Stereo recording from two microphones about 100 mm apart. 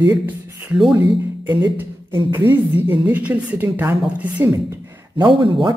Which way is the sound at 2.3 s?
20° right (ahead or behind).